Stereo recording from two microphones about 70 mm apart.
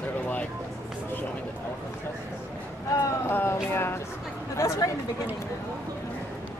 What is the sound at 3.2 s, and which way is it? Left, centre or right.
Speech, left.